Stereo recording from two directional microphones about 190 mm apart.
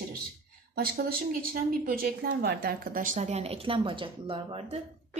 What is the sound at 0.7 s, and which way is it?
Speech, 50° right (ahead or behind).